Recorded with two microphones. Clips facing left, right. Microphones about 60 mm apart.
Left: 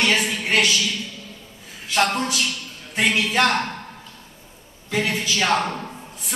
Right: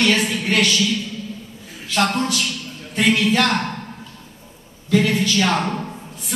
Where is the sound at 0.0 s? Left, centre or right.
Centre.